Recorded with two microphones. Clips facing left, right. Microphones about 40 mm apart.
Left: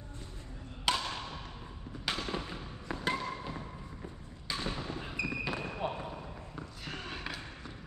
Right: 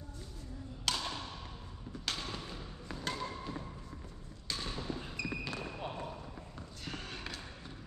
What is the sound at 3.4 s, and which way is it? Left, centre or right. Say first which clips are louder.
Thump: left 1 dB; left.